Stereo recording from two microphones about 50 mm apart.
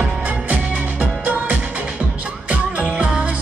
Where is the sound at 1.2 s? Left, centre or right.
Right.